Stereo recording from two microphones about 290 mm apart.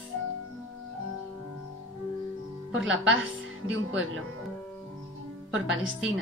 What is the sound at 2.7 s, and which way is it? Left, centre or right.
Speech, right.